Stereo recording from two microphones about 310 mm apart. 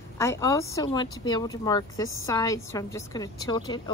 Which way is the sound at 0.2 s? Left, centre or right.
Centre.